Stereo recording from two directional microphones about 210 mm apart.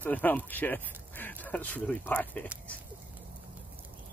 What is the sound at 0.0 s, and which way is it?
Speech, 10° left (ahead or behind).